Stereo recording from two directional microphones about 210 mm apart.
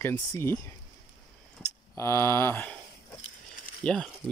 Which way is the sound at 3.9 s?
5° left (ahead or behind).